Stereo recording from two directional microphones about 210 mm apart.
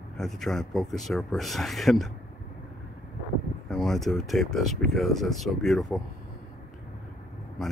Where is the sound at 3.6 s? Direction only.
Centre (ahead or behind).